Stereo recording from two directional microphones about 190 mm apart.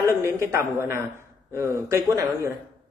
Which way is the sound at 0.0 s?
15° right (ahead or behind).